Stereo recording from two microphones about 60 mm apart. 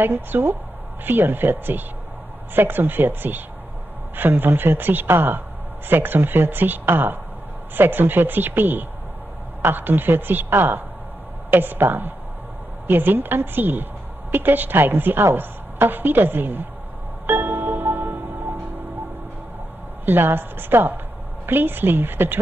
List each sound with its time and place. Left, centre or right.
0.0 s speech: right
17.3 s music: right
20.1 s speech: right